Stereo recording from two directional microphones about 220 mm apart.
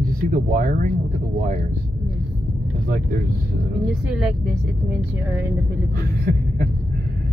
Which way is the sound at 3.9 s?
Centre (ahead or behind).